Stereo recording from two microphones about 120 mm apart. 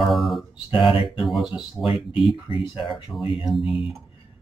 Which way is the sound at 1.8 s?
45° left (ahead or behind).